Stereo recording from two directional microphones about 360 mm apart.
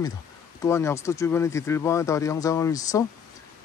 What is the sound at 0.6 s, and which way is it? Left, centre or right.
Speech, centre.